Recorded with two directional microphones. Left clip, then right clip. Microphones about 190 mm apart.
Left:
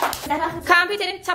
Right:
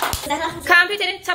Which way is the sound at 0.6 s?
10° left (ahead or behind).